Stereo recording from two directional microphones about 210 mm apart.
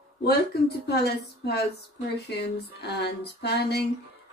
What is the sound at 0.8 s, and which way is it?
Speech, 50° left (ahead or behind).